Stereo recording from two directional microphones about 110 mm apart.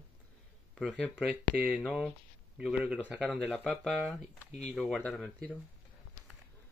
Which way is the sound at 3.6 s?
Centre (ahead or behind).